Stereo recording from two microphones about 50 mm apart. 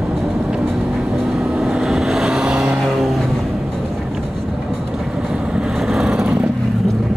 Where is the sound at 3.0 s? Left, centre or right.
Centre.